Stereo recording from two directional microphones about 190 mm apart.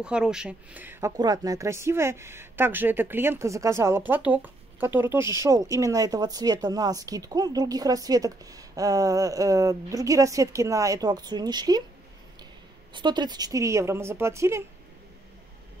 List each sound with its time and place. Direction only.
0.0 s speech: 5° right (ahead or behind); by 11.8 s 20° right (ahead or behind)
12.9 s speech: 25° right (ahead or behind)